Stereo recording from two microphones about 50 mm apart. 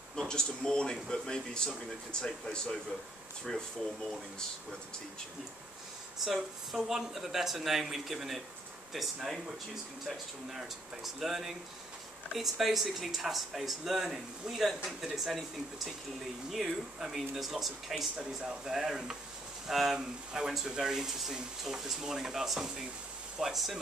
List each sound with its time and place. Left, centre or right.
0.3 s speech: centre
6.2 s speech: centre
16.5 s speech: centre